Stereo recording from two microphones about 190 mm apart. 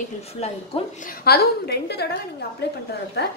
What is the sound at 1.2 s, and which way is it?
Speech, 55° left (ahead or behind).